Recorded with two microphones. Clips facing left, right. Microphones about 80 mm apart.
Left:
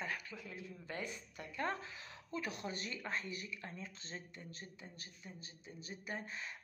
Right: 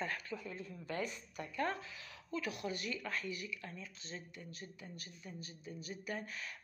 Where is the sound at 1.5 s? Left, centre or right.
Left.